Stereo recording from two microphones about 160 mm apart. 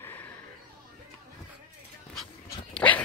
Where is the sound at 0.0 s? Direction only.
10° left (ahead or behind).